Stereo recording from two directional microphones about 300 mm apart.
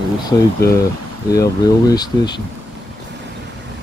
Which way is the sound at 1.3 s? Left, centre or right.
Centre.